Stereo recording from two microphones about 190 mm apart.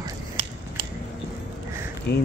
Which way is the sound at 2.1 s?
60° left (ahead or behind).